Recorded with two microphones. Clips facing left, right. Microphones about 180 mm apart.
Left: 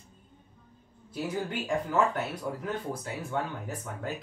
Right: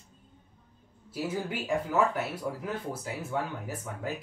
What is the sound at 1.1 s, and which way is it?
Speech, 5° right (ahead or behind).